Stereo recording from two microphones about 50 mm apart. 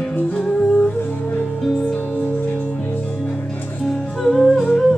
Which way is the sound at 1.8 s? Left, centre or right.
Centre.